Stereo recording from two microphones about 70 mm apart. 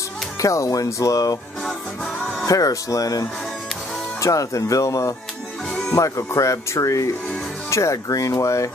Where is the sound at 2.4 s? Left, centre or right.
Left.